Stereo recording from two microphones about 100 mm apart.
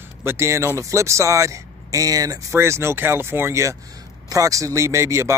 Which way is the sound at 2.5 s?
25° right (ahead or behind).